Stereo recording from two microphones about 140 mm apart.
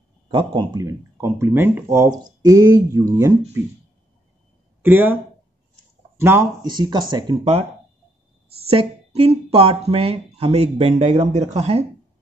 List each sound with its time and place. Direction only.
0.3 s speech: 35° right (ahead or behind)
4.8 s speech: 15° right (ahead or behind)
6.6 s speech: 30° right (ahead or behind)
8.6 s speech: 40° right (ahead or behind)